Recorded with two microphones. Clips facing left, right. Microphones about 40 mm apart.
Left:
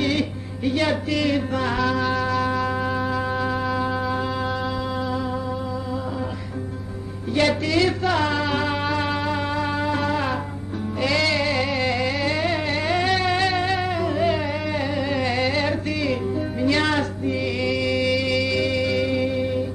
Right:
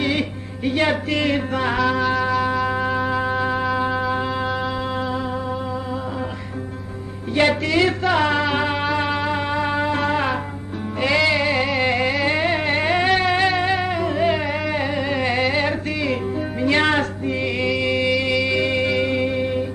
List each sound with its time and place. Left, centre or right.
0.0 s music: right
2.0 s music: centre
2.2 s music: centre
7.3 s speech: right
8.1 s music: right; by 9.3 s centre
9.3 s music: right
12.3 s a sound: right
13.1 s a sound: centre
13.6 s music: right